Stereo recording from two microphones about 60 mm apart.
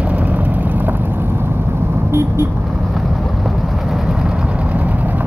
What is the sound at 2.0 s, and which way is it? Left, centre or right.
Vehicle, right.